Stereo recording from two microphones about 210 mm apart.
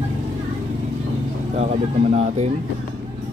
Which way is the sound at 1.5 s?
30° right (ahead or behind).